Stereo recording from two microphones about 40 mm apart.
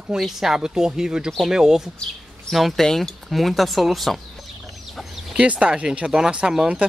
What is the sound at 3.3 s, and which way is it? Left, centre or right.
Speech, centre.